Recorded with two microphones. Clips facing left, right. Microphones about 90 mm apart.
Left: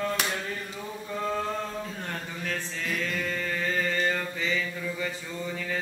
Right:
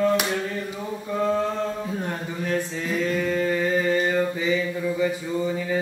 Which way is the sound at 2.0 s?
20° right (ahead or behind).